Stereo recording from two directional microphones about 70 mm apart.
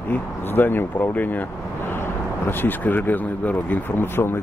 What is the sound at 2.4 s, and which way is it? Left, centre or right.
Speech, left.